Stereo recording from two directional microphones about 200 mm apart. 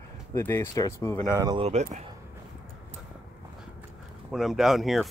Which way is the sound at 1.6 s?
35° right (ahead or behind).